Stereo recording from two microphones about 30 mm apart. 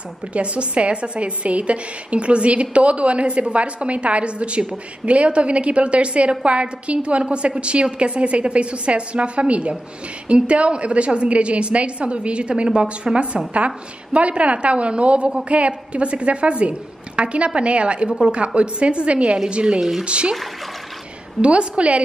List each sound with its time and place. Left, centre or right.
0.3 s a woman's voice: right
14.1 s a woman's voice: right
21.4 s a woman's voice: right